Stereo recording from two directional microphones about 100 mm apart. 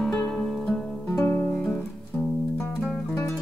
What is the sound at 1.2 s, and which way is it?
Guitar, 25° left (ahead or behind).